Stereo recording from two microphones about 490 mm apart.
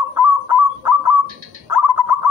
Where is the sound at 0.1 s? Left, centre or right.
Right.